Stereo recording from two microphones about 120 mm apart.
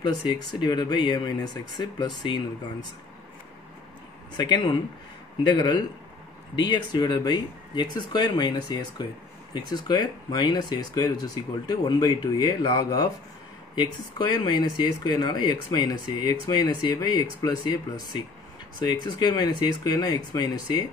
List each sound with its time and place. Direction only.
0.0 s speech: 35° left (ahead or behind)
4.4 s speech: 40° left (ahead or behind)